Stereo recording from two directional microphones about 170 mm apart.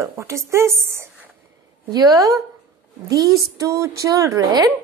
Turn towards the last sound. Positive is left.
turn(degrees=-20)  # may be behind; listen again after turning